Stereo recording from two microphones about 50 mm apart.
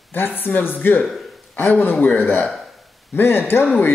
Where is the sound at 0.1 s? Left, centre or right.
Left.